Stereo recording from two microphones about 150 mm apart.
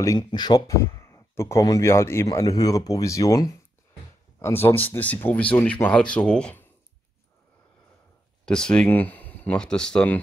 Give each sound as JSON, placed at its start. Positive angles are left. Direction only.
{"t": 0.0, "sound": "speech", "side_deg": 25}
{"t": 8.5, "sound": "speech", "side_deg": 5}